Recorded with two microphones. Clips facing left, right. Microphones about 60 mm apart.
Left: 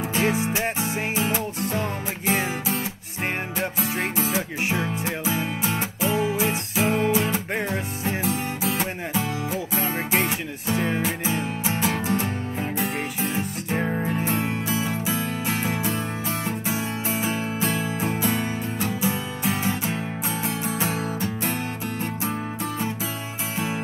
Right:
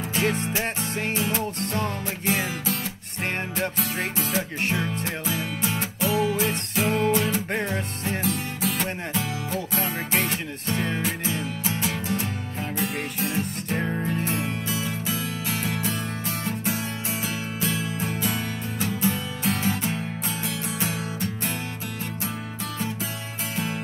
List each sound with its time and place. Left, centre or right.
0.1 s music: centre
4.3 s music: centre
5.3 s music: left
6.1 s music: centre
11.3 s music: left
13.2 s music: centre
14.7 s music: left
19.4 s music: centre
19.9 s music: left
23.5 s music: centre